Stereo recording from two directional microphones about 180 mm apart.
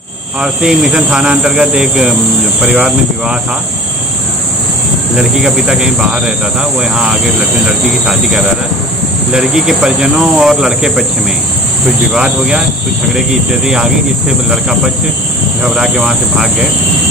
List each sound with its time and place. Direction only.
0.4 s speech: 5° right (ahead or behind)
5.1 s speech: 5° right (ahead or behind)
12.1 s speech: 5° right (ahead or behind)
15.6 s speech: centre (ahead or behind)